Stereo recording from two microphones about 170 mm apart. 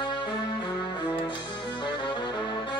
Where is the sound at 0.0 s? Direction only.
30° left (ahead or behind).